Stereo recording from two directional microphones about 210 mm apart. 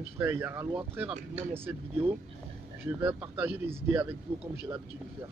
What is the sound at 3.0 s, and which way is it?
Speech, 10° right (ahead or behind).